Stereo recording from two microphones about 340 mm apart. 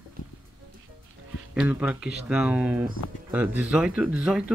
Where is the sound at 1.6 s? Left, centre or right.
Centre.